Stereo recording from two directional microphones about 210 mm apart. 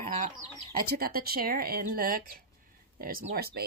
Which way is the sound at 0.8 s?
45° right (ahead or behind).